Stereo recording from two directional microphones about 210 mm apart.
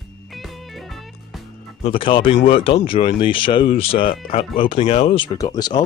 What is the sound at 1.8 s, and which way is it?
Speech, 25° left (ahead or behind).